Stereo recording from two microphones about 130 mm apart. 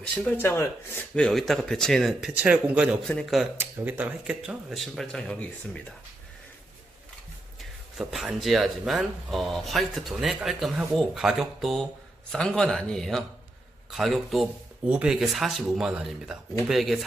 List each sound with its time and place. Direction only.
0.1 s speech: 15° left (ahead or behind)
1.1 s speech: 5° left (ahead or behind)
2.1 s speech: 10° right (ahead or behind)
3.1 s speech: 5° left (ahead or behind)
3.8 s speech: 15° right (ahead or behind); by 5.9 s 5° left (ahead or behind)
8.0 s speech: 5° right (ahead or behind)